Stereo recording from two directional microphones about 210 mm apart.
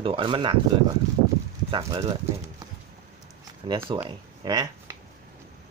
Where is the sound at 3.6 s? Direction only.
20° right (ahead or behind).